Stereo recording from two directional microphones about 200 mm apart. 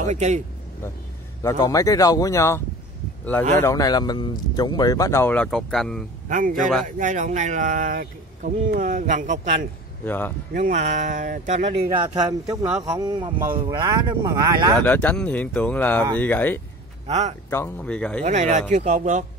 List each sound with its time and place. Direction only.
0.0 s speech: 35° right (ahead or behind)
1.4 s speech: 15° left (ahead or behind)
3.6 s speech: 20° left (ahead or behind); by 6.0 s centre (ahead or behind)
6.2 s speech: 40° right (ahead or behind)
10.0 s speech: 10° left (ahead or behind)
10.5 s speech: 40° right (ahead or behind)
12.8 s speech: 20° right (ahead or behind)
14.8 s speech: 5° left (ahead or behind)
17.1 s speech: 35° right (ahead or behind)
17.5 s speech: 10° left (ahead or behind)
18.2 s speech: 35° right (ahead or behind)